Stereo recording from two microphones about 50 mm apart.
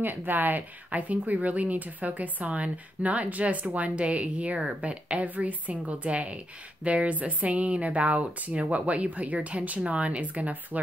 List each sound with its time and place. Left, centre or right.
0.0 s speech: right